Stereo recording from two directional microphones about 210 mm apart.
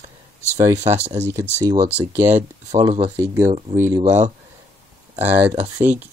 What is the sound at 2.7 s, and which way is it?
Speech, 30° right (ahead or behind).